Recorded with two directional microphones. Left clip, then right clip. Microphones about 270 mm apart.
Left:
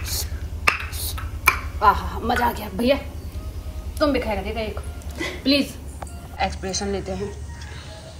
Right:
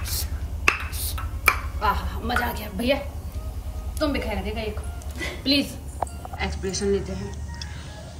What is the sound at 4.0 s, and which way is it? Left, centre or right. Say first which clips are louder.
A woman's voice: left 5 dB; centre.